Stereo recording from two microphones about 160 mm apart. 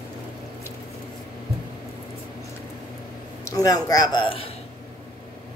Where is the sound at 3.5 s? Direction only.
20° left (ahead or behind).